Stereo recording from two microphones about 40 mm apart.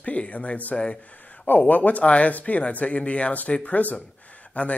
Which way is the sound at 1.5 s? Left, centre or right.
Left.